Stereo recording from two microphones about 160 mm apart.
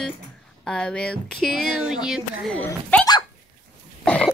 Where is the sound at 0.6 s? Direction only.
5° left (ahead or behind).